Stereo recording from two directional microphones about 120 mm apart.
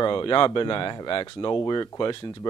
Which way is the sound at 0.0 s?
40° left (ahead or behind).